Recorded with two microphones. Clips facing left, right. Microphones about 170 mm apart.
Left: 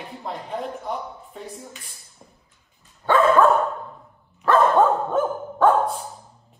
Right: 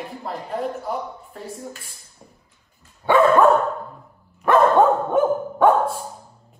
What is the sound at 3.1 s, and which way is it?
Dog, 20° right (ahead or behind).